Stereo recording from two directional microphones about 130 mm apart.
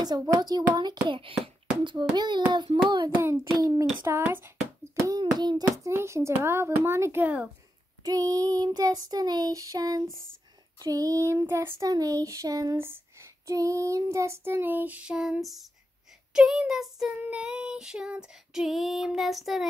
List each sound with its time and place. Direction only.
0.2 s child singing: 30° right (ahead or behind)
1.0 s child singing: 40° right (ahead or behind); by 4.5 s 20° right (ahead or behind)
4.9 s a sound: 25° right (ahead or behind)
5.4 s child singing: 30° right (ahead or behind); by 7.4 s 15° right (ahead or behind)
8.0 s child singing: 25° right (ahead or behind); by 15.6 s centre (ahead or behind)
16.3 s female singing: 5° right (ahead or behind)